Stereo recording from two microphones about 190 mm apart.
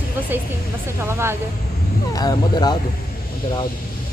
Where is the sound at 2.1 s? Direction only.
20° left (ahead or behind).